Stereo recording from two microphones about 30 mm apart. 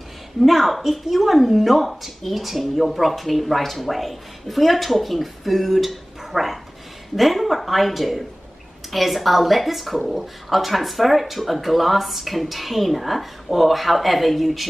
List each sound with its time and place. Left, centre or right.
0.4 s speech: centre